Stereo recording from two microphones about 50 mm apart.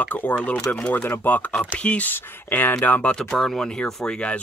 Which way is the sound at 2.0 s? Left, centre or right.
Left.